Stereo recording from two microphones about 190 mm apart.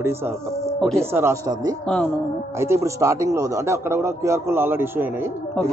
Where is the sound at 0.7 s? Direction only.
5° left (ahead or behind).